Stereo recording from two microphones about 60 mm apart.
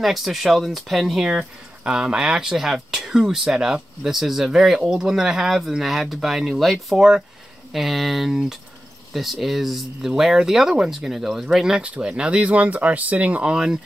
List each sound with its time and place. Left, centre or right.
0.0 s speech: centre
1.9 s speech: centre